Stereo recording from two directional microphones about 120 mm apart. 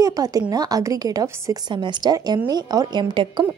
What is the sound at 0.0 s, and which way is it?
A woman's voice, 30° right (ahead or behind).